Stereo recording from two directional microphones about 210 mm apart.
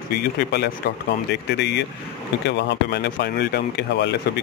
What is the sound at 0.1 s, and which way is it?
Speech, 50° left (ahead or behind).